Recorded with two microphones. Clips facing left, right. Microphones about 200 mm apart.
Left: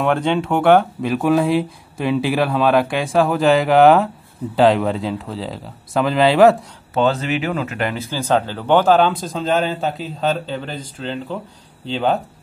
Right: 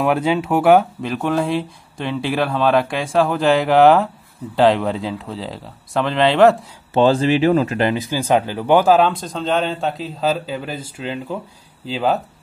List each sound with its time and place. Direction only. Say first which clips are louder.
0.0 s speech: even; 5° right (ahead or behind)
6.9 s speech: right 4 dB; 30° right (ahead or behind)
7.9 s speech: right 2 dB; 15° right (ahead or behind)